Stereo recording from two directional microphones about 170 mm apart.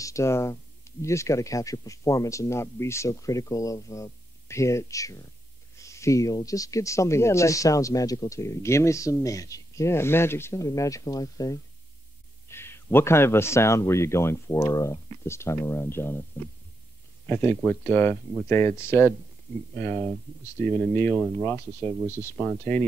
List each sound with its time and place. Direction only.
0.0 s speech: 15° left (ahead or behind)
17.3 s speech: 15° left (ahead or behind)
22.1 s speech: 15° left (ahead or behind)